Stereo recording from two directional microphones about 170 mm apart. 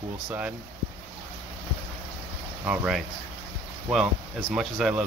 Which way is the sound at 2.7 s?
Centre (ahead or behind).